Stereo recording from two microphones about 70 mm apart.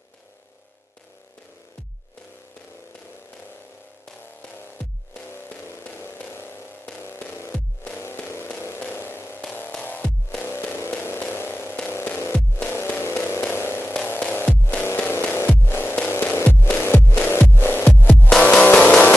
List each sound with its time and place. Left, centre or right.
7.0 s music: left
8.9 s a sound: left
9.8 s music: left
10.4 s music: left
11.1 s a sound: left
11.9 s music: left; by 19.1 s centre